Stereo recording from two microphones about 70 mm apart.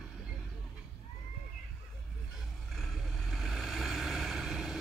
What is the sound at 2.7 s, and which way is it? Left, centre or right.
Vehicle, centre.